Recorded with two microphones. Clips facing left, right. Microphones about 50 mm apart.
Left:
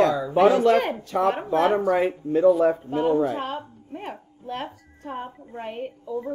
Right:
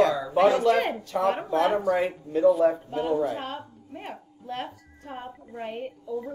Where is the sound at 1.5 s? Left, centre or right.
Left.